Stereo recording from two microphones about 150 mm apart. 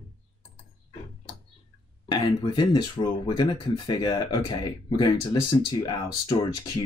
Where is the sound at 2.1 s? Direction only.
30° left (ahead or behind).